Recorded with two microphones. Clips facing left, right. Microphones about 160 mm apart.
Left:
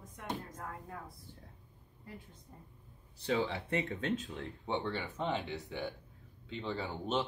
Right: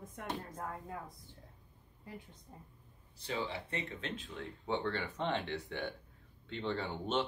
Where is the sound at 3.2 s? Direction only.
60° left (ahead or behind); by 4.4 s 40° left (ahead or behind).